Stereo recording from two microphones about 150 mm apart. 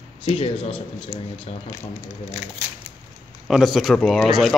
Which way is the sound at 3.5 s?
Centre (ahead or behind).